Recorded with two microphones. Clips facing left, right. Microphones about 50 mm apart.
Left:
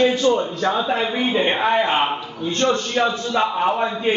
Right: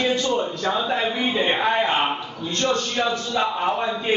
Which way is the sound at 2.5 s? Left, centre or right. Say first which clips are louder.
Left 3 dB; left.